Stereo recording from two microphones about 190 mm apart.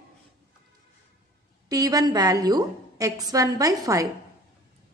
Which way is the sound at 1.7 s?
20° right (ahead or behind).